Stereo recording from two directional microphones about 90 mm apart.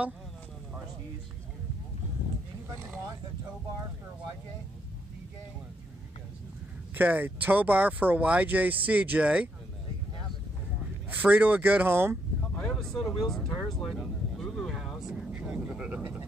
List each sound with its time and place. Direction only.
7.0 s speech: 20° right (ahead or behind)
11.2 s speech: 15° right (ahead or behind)
12.5 s vehicle: 10° left (ahead or behind); by 16.3 s 20° right (ahead or behind)